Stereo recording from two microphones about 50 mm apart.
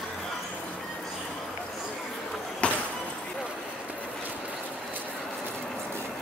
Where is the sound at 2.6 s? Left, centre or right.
Left.